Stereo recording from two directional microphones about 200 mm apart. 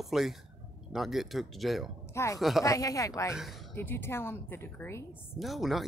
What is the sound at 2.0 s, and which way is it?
A woman's voice, 15° left (ahead or behind).